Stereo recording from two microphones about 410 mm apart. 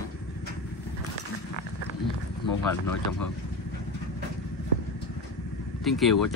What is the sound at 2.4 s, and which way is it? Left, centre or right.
Speech, left.